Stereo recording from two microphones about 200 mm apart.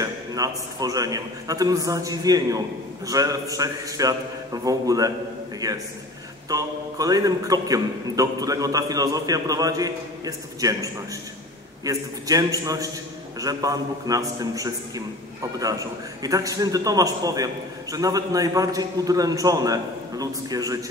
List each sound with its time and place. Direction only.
0.0 s a man's voice: 20° right (ahead or behind)